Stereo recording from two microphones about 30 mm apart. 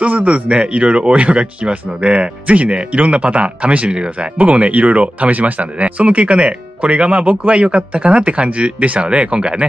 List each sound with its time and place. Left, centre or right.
0.0 s speech: right
0.3 s speech: right